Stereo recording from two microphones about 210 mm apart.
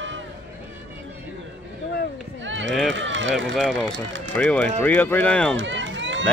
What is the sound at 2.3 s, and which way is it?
Run, 60° right (ahead or behind).